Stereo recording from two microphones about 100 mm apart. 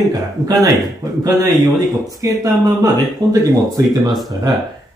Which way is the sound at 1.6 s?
35° right (ahead or behind).